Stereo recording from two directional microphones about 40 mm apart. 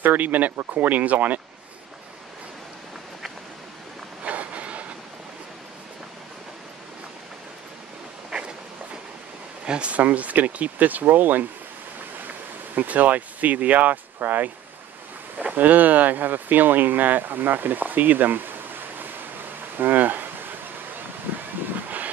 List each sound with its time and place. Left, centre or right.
0.0 s speech: right
4.2 s train: right
9.7 s speech: right
12.7 s speech: right
15.3 s a sound: right